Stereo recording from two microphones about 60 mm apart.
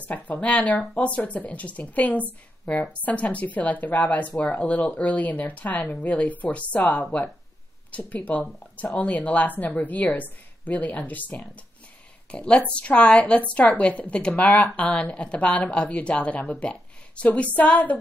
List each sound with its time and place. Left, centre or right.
0.1 s a woman's voice: left
8.1 s a woman's voice: left